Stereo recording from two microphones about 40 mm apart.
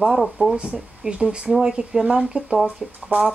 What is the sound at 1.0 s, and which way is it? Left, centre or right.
A woman's voice, right.